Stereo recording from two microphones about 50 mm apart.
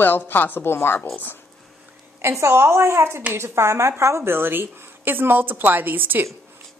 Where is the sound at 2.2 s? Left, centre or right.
Right.